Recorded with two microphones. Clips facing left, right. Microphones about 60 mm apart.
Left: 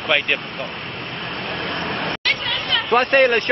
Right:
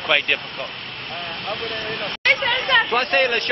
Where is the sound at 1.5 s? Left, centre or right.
Left.